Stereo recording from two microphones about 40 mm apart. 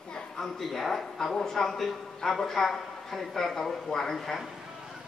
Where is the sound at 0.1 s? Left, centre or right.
Centre.